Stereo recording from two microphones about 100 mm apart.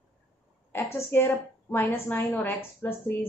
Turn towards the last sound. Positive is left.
turn(degrees=20)  # may be behind; listen again after turning